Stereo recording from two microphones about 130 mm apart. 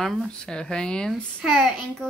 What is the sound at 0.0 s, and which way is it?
Speech, centre (ahead or behind).